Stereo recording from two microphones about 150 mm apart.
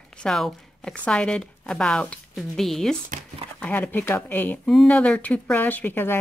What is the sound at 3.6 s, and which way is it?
Speech, 10° left (ahead or behind).